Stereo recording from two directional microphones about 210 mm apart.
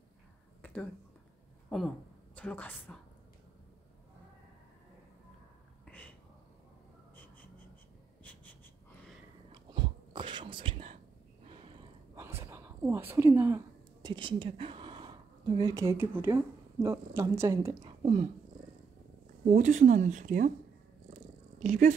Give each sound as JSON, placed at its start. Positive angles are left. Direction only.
{"t": 1.7, "sound": "a woman's voice", "side_deg": 5}
{"t": 5.9, "sound": "a sound", "side_deg": 5}
{"t": 8.2, "sound": "wheeze", "side_deg": 5}
{"t": 9.5, "sound": "whispering", "side_deg": -20}
{"t": 12.2, "sound": "a sound", "side_deg": -10}
{"t": 14.0, "sound": "a woman's voice", "side_deg": -20}
{"t": 19.4, "sound": "speech", "side_deg": -35}
{"t": 21.1, "sound": "purr", "side_deg": -35}